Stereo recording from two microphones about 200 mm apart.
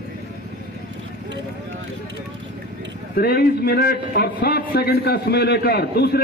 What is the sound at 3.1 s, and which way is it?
A man's voice, 50° left (ahead or behind).